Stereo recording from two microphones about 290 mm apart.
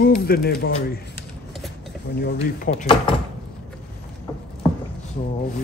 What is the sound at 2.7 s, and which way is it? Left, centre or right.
Speech, centre.